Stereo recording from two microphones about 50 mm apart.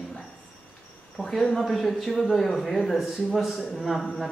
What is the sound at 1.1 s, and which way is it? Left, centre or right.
A man's voice, centre.